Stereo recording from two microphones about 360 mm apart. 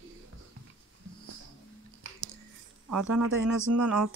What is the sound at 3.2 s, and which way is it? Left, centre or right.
Speech, right.